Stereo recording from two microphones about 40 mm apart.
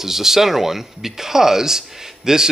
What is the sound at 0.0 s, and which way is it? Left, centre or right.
Speech, centre.